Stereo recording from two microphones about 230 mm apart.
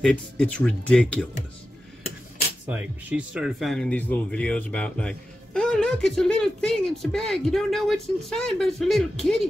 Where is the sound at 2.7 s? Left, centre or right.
Centre.